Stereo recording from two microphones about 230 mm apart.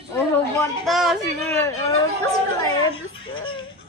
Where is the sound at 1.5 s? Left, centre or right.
Centre.